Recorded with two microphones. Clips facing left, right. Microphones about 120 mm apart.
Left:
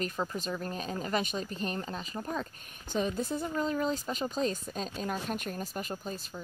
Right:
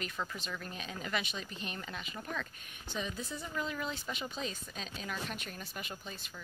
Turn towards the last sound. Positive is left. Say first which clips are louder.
# left 8 dB
turn(degrees=40)  # may be behind; listen again after turning